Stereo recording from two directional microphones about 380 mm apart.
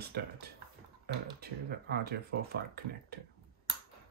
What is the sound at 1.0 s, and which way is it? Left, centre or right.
Speech, right.